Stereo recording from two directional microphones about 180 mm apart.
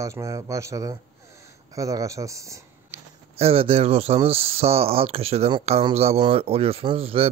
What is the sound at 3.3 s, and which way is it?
Speech, 35° right (ahead or behind).